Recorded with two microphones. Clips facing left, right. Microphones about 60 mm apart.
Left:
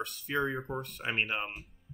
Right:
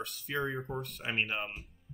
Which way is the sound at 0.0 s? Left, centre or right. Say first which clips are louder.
Left 3 dB; centre.